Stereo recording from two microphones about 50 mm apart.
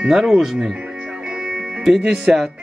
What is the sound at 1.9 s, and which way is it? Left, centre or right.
Speech, centre.